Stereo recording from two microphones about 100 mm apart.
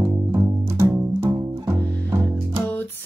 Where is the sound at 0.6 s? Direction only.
25° right (ahead or behind).